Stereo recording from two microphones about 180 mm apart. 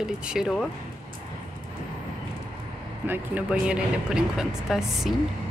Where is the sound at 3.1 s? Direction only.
5° right (ahead or behind).